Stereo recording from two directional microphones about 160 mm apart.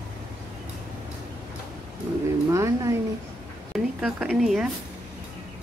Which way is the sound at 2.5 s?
20° right (ahead or behind).